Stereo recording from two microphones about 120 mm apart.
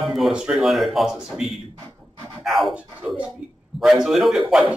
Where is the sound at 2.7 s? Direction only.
10° right (ahead or behind).